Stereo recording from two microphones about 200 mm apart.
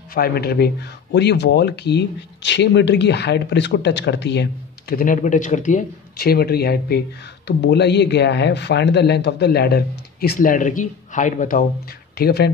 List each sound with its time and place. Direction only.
0.1 s speech: 50° left (ahead or behind)
12.2 s speech: 55° left (ahead or behind)